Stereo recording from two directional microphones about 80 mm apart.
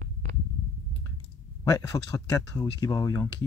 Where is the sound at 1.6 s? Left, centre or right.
Left.